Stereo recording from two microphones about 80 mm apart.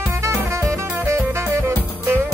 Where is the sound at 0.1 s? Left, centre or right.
Right.